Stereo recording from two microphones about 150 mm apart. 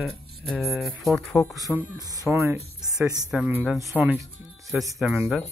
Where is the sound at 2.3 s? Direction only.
20° right (ahead or behind).